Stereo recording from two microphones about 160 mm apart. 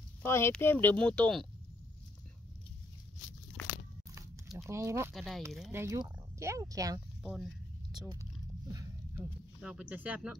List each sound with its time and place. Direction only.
0.2 s speech: 15° left (ahead or behind)
4.6 s speech: 15° right (ahead or behind)
5.1 s speech: centre (ahead or behind)
5.7 s speech: 15° right (ahead or behind)
7.2 s a sound: centre (ahead or behind)
8.7 s speech: 10° right (ahead or behind)